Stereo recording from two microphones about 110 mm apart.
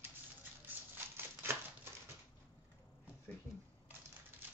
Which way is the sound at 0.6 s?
20° right (ahead or behind).